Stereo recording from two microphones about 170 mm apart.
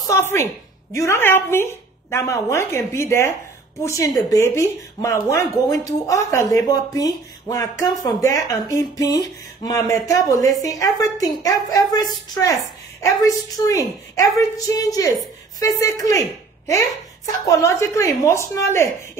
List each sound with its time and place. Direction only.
0.1 s a woman's voice: 15° left (ahead or behind)